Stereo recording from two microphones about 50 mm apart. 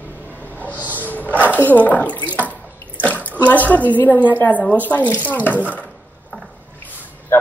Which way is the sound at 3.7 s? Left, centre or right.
Left.